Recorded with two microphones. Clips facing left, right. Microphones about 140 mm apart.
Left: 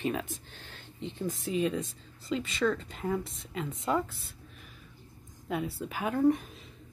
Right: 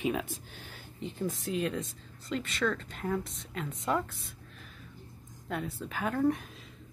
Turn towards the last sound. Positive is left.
turn(degrees=5)  # may be behind; listen again after turning